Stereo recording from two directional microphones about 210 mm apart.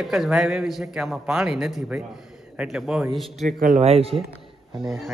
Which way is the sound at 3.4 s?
35° right (ahead or behind).